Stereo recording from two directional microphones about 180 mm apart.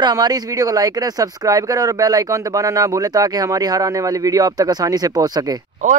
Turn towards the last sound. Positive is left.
turn(degrees=-40)  # may be behind; listen again after turning